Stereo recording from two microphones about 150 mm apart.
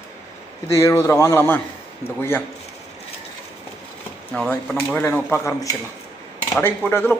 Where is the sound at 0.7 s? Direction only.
20° left (ahead or behind).